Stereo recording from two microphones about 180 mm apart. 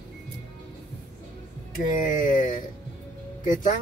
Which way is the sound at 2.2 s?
45° left (ahead or behind).